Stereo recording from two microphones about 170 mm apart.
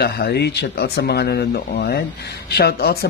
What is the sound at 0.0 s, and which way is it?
Speech, 70° left (ahead or behind).